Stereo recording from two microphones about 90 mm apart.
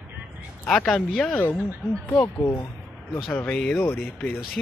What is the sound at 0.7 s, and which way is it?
Speech, 5° left (ahead or behind).